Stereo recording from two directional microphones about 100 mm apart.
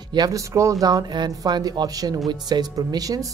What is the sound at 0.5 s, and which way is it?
Speech, 30° right (ahead or behind).